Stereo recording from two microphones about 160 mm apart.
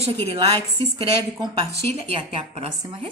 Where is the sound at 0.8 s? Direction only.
35° right (ahead or behind).